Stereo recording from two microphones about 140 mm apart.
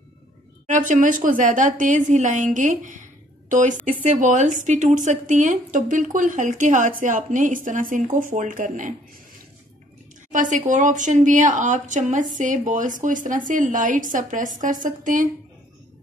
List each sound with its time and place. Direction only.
0.7 s a woman's voice: 65° right (ahead or behind)
10.3 s a woman's voice: 65° right (ahead or behind)